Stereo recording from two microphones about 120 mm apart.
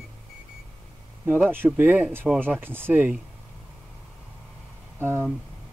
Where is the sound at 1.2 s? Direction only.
15° right (ahead or behind).